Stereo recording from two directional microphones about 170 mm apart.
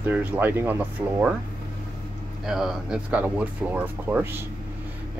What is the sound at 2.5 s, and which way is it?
Speech, 5° right (ahead or behind).